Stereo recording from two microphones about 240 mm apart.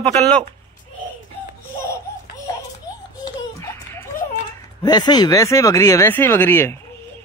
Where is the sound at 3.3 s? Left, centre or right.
Centre.